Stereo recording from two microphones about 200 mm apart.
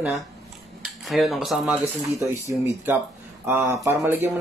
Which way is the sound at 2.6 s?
10° right (ahead or behind).